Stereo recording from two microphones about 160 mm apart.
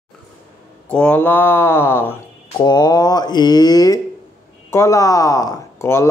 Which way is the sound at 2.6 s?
25° left (ahead or behind).